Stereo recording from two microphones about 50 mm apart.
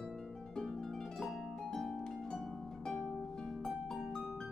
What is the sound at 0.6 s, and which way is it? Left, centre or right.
Harp, centre.